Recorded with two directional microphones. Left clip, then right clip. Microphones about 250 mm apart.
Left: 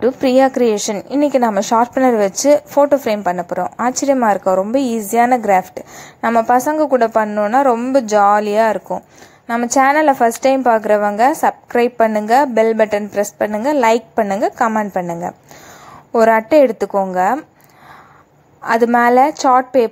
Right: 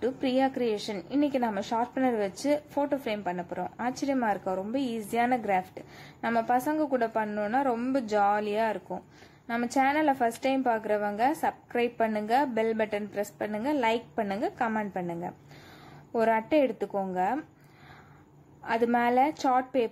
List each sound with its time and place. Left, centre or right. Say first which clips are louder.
0.0 s a woman's voice: left 15 dB; centre
18.6 s a woman's voice: left 14 dB; centre